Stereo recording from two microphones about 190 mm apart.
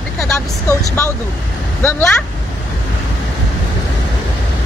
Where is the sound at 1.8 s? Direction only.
10° left (ahead or behind).